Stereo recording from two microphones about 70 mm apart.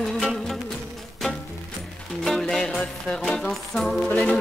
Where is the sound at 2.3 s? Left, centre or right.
Centre.